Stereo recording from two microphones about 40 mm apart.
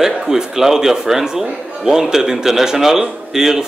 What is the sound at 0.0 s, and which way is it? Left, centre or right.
A man's voice, centre.